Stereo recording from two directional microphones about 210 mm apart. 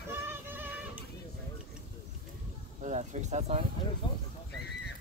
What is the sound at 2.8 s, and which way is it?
Speech, 35° right (ahead or behind).